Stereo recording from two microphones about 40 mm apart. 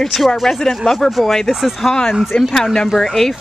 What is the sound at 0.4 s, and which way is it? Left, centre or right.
Speech, centre.